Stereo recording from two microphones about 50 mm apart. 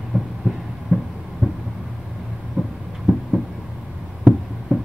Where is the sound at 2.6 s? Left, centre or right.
Right.